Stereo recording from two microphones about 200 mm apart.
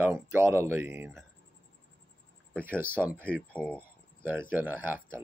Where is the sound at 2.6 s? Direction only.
10° right (ahead or behind).